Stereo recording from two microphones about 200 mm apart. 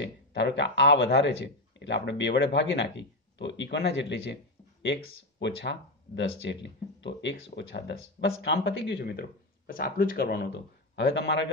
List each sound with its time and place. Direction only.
0.0 s speech: 60° left (ahead or behind)
5.4 s speech: 60° left (ahead or behind)
9.7 s speech: 45° left (ahead or behind)
11.0 s speech: 60° left (ahead or behind)